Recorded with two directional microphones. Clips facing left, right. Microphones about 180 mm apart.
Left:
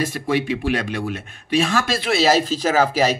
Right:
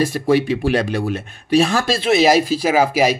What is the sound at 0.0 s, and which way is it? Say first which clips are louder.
Speech: right 5 dB; 35° right (ahead or behind).